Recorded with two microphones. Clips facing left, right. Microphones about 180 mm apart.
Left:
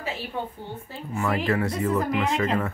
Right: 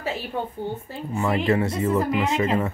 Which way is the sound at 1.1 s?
25° right (ahead or behind).